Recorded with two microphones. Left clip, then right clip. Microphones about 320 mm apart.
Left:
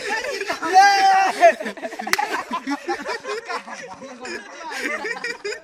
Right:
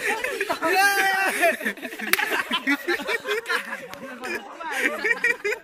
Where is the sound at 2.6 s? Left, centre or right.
Centre.